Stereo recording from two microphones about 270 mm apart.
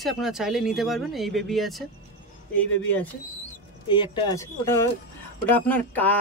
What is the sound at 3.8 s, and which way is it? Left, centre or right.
Speech, centre.